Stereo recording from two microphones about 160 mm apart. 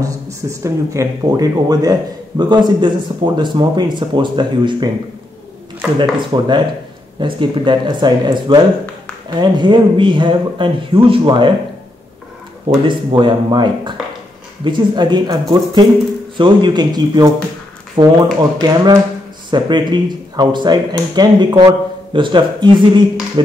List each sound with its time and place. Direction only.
0.0 s speech: 20° right (ahead or behind)
5.9 s speech: 30° right (ahead or behind)
12.8 s speech: 30° right (ahead or behind)